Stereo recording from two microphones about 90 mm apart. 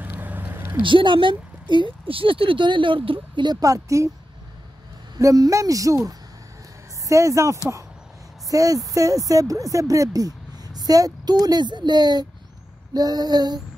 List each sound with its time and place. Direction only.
0.0 s a sound: 20° right (ahead or behind)
0.8 s speech: 65° right (ahead or behind)
3.5 s speech: 40° right (ahead or behind)
5.2 s speech: 40° right (ahead or behind)